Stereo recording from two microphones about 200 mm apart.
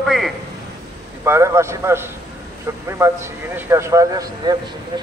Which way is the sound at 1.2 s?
15° right (ahead or behind).